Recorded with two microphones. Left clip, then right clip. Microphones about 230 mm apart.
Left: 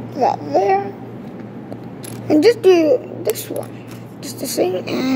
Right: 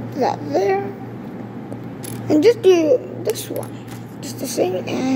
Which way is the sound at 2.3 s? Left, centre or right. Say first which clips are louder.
Left 1 dB; centre.